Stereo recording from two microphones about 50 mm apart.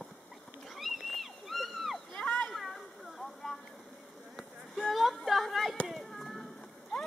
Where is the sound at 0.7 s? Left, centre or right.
Centre.